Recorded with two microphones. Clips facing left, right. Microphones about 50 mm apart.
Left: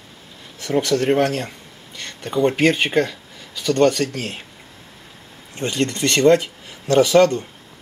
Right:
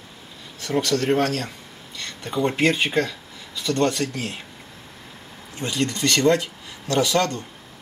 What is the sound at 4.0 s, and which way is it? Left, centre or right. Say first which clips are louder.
Speech: left 4 dB; centre.